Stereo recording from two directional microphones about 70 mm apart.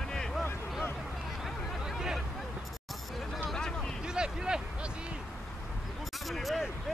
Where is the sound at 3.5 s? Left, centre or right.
Centre.